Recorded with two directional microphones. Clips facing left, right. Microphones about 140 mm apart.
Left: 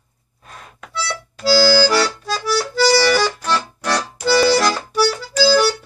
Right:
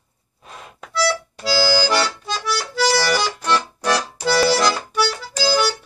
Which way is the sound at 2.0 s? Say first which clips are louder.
Left 3 dB; centre (ahead or behind).